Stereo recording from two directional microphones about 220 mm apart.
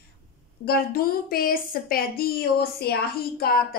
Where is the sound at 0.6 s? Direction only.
45° left (ahead or behind).